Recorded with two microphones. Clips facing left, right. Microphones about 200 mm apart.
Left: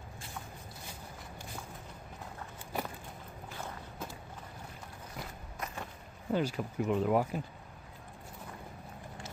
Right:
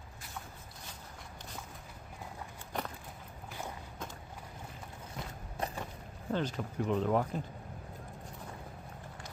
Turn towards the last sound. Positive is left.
turn(degrees=10)  # may be behind; listen again after turning